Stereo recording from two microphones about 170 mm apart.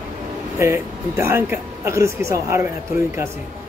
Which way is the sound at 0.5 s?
15° right (ahead or behind).